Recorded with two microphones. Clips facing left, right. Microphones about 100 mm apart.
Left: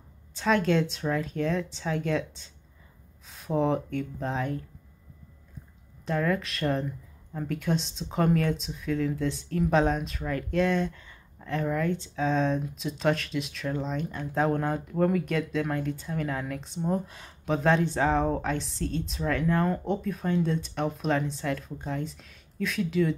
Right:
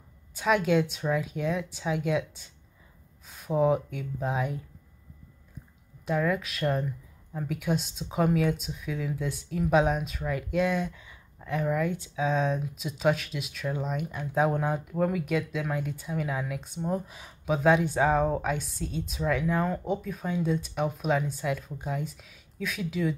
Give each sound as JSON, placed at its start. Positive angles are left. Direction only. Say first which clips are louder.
{"t": 0.3, "sound": "speech", "louder": "even", "side_deg": -10}
{"t": 6.0, "sound": "speech", "louder": "even", "side_deg": -5}